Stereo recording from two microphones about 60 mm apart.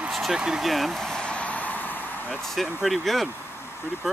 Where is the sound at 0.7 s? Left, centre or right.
Centre; by 2.4 s left.